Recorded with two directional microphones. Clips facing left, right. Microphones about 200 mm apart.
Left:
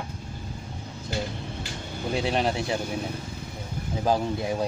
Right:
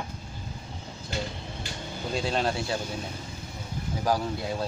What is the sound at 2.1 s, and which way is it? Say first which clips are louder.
Speech: left 2 dB; 15° left (ahead or behind).